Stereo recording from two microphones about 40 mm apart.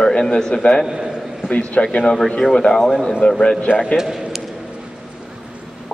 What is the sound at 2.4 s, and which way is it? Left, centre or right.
Speech, centre.